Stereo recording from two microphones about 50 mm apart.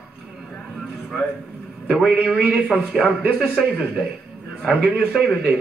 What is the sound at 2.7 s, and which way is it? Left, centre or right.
Speech, centre.